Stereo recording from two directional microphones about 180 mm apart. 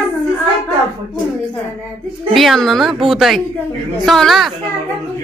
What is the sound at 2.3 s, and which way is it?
Speech, centre (ahead or behind).